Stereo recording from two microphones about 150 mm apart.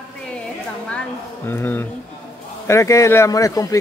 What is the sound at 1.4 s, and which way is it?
Speech, 15° left (ahead or behind).